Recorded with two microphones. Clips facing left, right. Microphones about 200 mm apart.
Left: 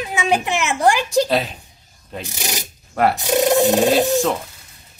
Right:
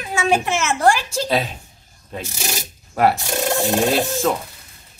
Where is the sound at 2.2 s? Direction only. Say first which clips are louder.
Left 1 dB; 15° left (ahead or behind).